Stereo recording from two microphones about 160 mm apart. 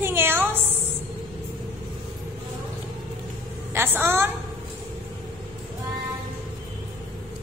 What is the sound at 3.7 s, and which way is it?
Speech, 15° right (ahead or behind).